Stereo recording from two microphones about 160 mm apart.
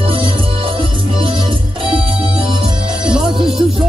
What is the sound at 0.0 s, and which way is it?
Music, 35° right (ahead or behind).